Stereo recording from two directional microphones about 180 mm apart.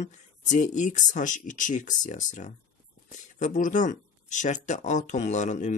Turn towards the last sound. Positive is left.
turn(degrees=40)  # may be behind; listen again after turning